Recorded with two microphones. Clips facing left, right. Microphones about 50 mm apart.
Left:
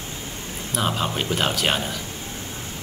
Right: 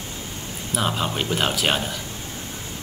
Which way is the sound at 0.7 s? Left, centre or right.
Centre.